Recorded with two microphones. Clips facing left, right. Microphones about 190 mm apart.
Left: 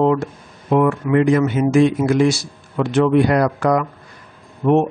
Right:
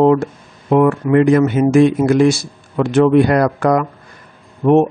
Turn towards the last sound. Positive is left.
turn(degrees=-40)  # may be behind; listen again after turning